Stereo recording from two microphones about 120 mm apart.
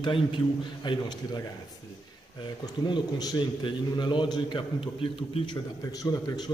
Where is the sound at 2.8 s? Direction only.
35° left (ahead or behind).